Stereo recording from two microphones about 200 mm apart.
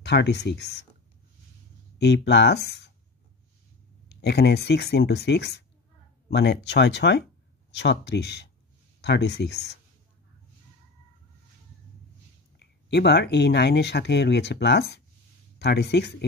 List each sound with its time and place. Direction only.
0.0 s speech: 60° left (ahead or behind)
2.0 s speech: 55° left (ahead or behind)
4.1 s speech: 55° left (ahead or behind)
12.5 s speech: 55° left (ahead or behind)